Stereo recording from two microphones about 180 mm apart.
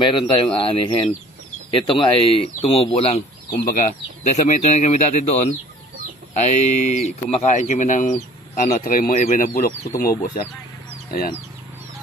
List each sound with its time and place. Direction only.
0.4 s speech: 30° left (ahead or behind)
3.6 s speech: 45° left (ahead or behind)